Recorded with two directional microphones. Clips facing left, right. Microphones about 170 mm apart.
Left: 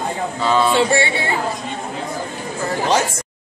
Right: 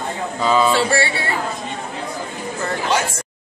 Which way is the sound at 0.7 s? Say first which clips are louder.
Left 2 dB; 20° left (ahead or behind).